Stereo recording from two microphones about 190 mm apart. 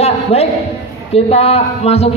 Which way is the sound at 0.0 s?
35° left (ahead or behind).